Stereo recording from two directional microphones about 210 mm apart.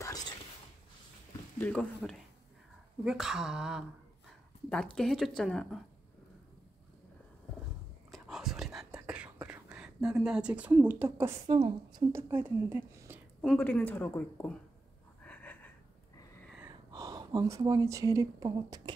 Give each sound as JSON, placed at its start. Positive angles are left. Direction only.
{"t": 1.6, "sound": "speech", "side_deg": 5}
{"t": 8.1, "sound": "whispering", "side_deg": 0}
{"t": 13.4, "sound": "speech", "side_deg": 5}
{"t": 15.2, "sound": "wheeze", "side_deg": 5}
{"t": 16.6, "sound": "speech", "side_deg": -20}